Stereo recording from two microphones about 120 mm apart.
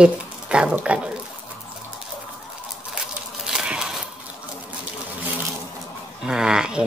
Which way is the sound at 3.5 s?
5° right (ahead or behind).